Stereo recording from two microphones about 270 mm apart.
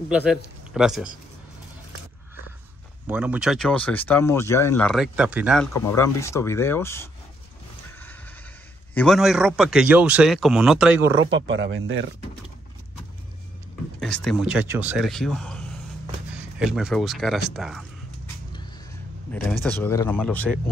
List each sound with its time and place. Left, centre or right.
0.1 s speech: centre
3.1 s speech: centre
5.7 s speech: centre
8.9 s speech: centre
11.2 s speech: right
13.9 s speech: centre
19.3 s speech: centre